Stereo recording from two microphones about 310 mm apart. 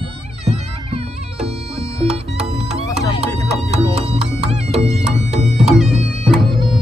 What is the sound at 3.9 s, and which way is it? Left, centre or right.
Music, centre.